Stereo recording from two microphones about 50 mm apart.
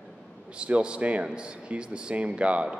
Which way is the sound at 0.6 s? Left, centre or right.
Right.